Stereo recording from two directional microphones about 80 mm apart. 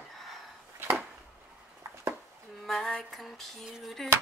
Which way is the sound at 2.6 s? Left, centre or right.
Centre.